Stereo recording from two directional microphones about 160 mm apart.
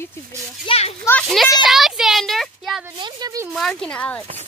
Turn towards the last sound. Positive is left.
turn(degrees=10)  # may be behind; listen again after turning